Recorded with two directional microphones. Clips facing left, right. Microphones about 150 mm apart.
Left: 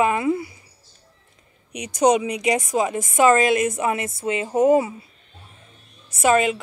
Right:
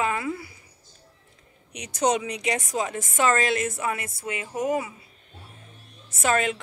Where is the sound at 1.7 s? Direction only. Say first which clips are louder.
Left 6 dB; 15° left (ahead or behind).